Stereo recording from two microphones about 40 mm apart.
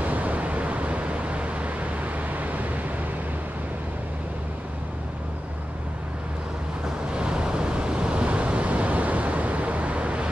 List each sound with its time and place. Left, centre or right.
0.0 s vehicle: right
7.2 s waves: right